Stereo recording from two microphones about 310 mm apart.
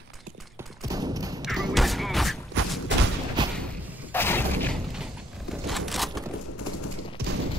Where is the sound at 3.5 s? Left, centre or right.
Centre.